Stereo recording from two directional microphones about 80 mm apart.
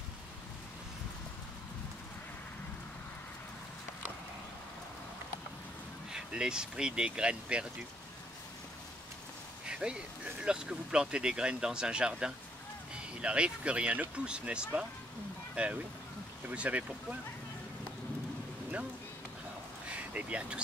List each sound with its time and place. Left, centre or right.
6.1 s speech: centre
9.7 s speech: centre
19.9 s speech: centre